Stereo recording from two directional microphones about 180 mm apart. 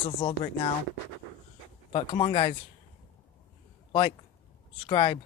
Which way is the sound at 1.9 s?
30° left (ahead or behind).